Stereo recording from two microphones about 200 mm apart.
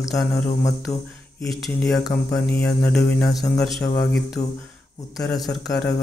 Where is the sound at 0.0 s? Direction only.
Centre (ahead or behind).